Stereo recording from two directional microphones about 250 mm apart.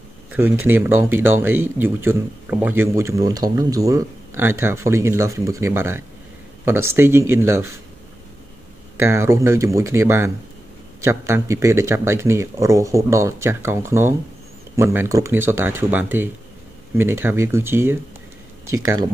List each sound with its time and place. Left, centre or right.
0.7 s speech: centre
8.9 s speech: centre